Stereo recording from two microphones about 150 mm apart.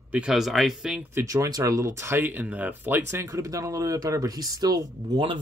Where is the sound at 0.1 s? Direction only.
5° right (ahead or behind).